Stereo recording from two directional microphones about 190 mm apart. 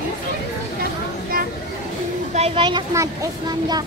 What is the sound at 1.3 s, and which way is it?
Vehicle, 50° right (ahead or behind).